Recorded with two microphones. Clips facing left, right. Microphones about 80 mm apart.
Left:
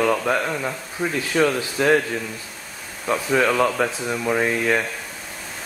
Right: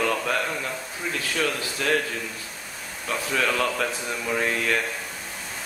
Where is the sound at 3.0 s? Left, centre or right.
Centre.